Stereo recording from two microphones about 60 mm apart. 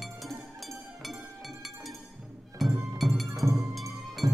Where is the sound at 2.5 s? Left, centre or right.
Centre.